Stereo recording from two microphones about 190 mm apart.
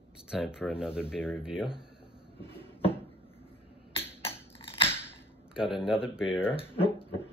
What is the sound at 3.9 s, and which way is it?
Beatboxing, 30° left (ahead or behind).